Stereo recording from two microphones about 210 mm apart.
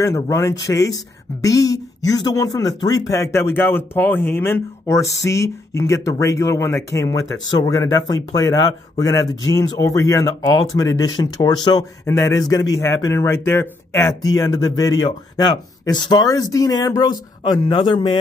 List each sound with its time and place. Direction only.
0.0 s speech: 15° left (ahead or behind)